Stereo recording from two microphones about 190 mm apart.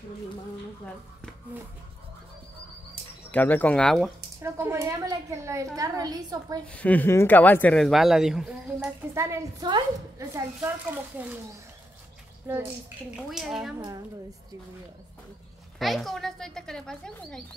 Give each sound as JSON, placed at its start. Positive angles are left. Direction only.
{"t": 3.3, "sound": "speech", "side_deg": 10}
{"t": 4.4, "sound": "a woman's voice", "side_deg": -15}
{"t": 6.7, "sound": "speech", "side_deg": 10}
{"t": 9.1, "sound": "a woman's voice", "side_deg": -15}
{"t": 13.1, "sound": "speech", "side_deg": 0}
{"t": 13.7, "sound": "a woman's voice", "side_deg": -20}
{"t": 15.8, "sound": "speech", "side_deg": 0}